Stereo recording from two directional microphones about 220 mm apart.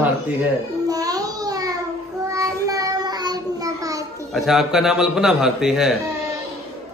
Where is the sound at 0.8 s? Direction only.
15° right (ahead or behind).